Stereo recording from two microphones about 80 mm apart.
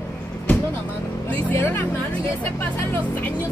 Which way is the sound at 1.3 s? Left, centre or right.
Left.